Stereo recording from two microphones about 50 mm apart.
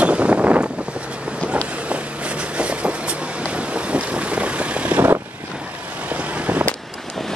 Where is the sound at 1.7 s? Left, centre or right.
Right.